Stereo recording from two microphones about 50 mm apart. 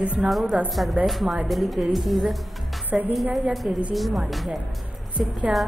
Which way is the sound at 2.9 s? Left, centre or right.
Right.